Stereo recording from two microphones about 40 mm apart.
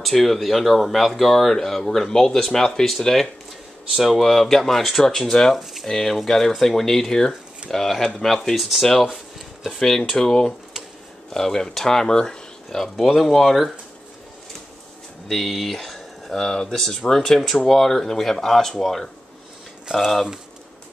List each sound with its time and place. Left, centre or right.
0.0 s speech: centre
3.9 s speech: centre
5.6 s speech: centre
5.9 s speech: centre
8.5 s speech: centre
9.1 s a sound: centre
9.8 s speech: centre
13.1 s speech: centre
15.2 s speech: centre